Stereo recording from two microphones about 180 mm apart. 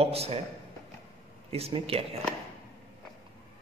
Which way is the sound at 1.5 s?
35° right (ahead or behind).